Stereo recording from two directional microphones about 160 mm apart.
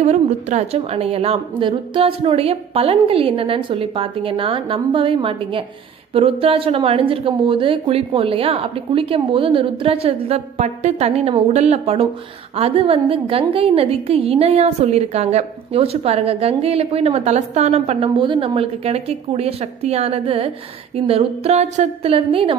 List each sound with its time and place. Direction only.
0.0 s a woman's voice: 45° right (ahead or behind)